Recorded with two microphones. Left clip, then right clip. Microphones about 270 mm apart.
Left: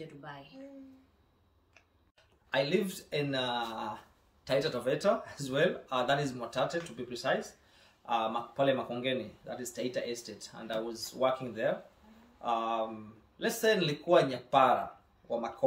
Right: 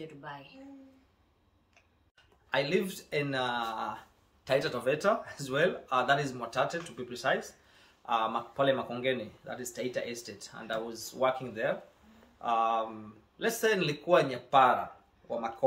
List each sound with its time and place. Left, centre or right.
0.0 s speech: centre
2.5 s speech: centre